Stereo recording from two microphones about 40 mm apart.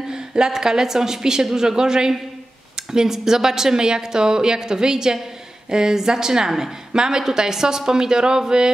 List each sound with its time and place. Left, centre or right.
0.1 s a woman's voice: centre